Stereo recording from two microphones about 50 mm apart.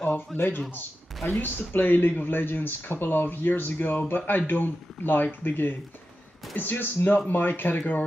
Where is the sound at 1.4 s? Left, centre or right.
Left.